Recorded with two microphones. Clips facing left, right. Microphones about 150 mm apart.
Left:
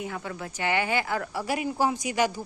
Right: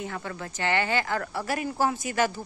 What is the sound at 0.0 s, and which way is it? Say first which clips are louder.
Speech: even; 10° left (ahead or behind).